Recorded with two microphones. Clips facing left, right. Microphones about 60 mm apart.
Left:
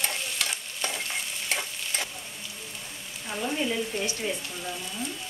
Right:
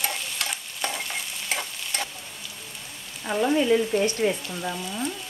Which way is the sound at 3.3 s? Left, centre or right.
Right.